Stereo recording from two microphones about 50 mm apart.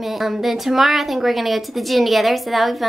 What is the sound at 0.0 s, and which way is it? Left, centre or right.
A woman's voice, centre.